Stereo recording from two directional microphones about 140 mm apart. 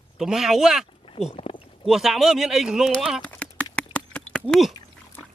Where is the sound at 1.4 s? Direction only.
40° left (ahead or behind).